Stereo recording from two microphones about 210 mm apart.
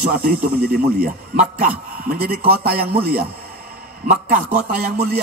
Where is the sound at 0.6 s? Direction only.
45° right (ahead or behind).